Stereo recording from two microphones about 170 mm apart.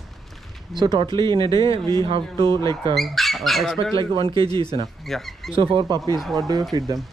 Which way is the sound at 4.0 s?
30° right (ahead or behind).